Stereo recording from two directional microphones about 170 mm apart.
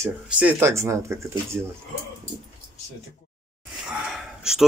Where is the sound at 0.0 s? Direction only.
10° right (ahead or behind).